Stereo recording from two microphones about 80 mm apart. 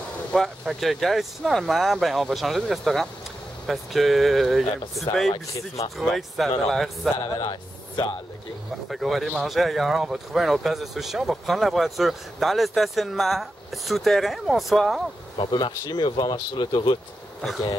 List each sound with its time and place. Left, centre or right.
0.3 s speech: centre
7.2 s speech: left
8.8 s speech: centre
15.3 s speech: left